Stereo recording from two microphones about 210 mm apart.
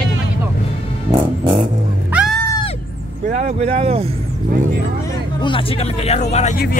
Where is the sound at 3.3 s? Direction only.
35° right (ahead or behind).